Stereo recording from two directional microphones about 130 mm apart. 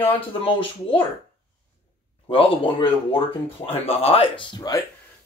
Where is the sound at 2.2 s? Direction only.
45° left (ahead or behind).